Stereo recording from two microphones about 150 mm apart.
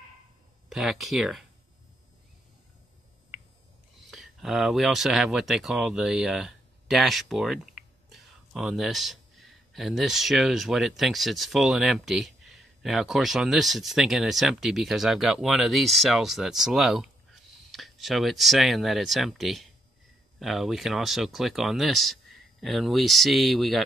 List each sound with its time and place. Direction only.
0.7 s speech: centre (ahead or behind)
4.1 s speech: centre (ahead or behind)